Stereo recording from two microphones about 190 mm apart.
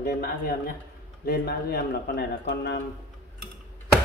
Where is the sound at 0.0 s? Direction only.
55° left (ahead or behind).